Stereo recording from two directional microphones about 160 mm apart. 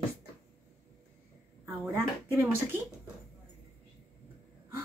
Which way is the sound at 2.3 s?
15° right (ahead or behind).